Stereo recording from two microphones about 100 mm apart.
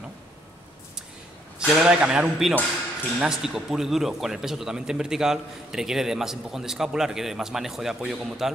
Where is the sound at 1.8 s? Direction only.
10° right (ahead or behind).